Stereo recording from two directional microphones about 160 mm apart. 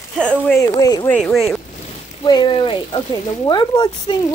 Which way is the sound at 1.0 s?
5° left (ahead or behind).